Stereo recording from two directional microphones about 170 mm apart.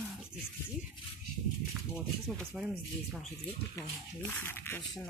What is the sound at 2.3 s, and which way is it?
Speech, centre (ahead or behind).